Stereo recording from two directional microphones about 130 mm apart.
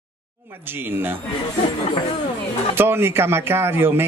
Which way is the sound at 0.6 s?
15° right (ahead or behind).